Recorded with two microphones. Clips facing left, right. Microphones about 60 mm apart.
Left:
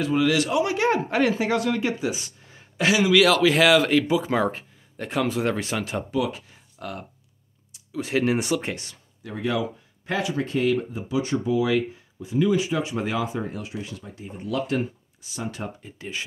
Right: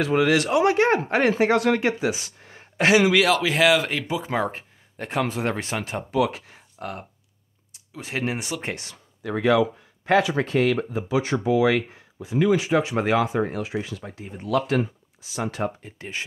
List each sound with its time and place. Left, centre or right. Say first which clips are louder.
0.0 s speech: right 2 dB; right
1.4 s speech: right 4 dB; right
2.5 s a sound: right 4 dB; right
3.2 s speech: left 2 dB; centre
6.1 s speech: right 5 dB; right
6.8 s speech: right 1 dB; right
7.9 s speech: left 5 dB; centre
8.7 s speech: right 1 dB; right
15.3 s speech: right 4 dB; right
15.6 s speech: right 6 dB; right